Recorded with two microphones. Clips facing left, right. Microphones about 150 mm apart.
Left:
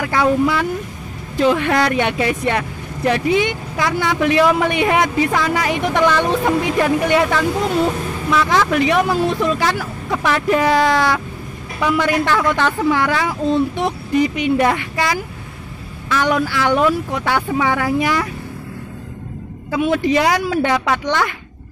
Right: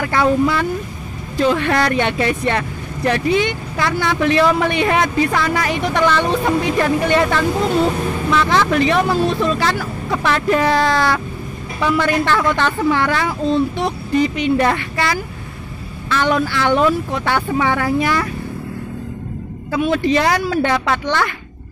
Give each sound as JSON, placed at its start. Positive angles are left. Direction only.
{"t": 0.0, "sound": "speech", "side_deg": 10}
{"t": 19.7, "sound": "speech", "side_deg": 15}